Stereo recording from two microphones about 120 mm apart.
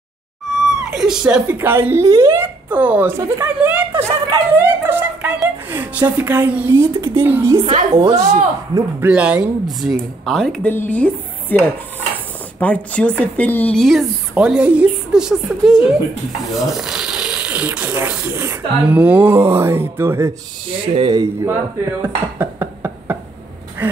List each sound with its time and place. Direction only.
0.5 s speech: 5° right (ahead or behind); by 3.4 s 20° right (ahead or behind)
3.5 s a sound: 10° right (ahead or behind)
4.6 s a woman's voice: 20° right (ahead or behind)
7.9 s speech: 55° right (ahead or behind)
9.0 s speech: 10° right (ahead or behind)
9.8 s speech: centre (ahead or behind)
10.7 s dishes: 15° left (ahead or behind)
13.7 s speech: centre (ahead or behind); by 20.3 s 20° right (ahead or behind)
20.8 s speech: 45° right (ahead or behind)
21.2 s a woman's voice: 25° right (ahead or behind)
22.0 s a sound: 20° right (ahead or behind)